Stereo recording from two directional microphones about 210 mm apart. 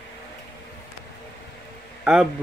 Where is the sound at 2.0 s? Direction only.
5° right (ahead or behind).